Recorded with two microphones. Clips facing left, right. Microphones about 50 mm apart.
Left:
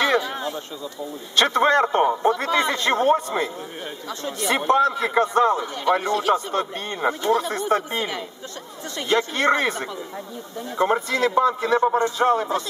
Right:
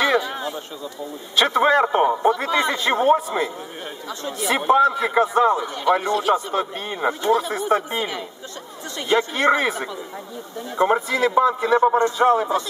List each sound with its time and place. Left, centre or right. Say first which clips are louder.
0.3 s a sound: even; centre
1.3 s a man's voice: right 1 dB; centre
6.0 s speech: right 1 dB; right
6.3 s a man's voice: right 1 dB; centre